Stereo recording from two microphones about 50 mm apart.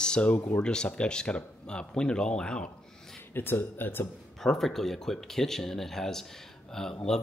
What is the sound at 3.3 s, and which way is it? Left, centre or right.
Speech, left.